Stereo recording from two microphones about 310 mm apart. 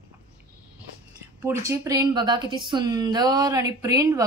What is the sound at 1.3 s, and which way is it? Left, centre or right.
A woman's voice, centre.